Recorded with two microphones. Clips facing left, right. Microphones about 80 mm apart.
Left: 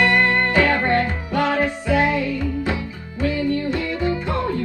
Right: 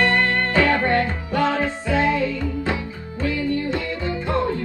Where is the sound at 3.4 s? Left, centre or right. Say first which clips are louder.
Left 1 dB; right.